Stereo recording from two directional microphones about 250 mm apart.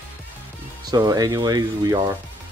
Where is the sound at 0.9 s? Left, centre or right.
Centre.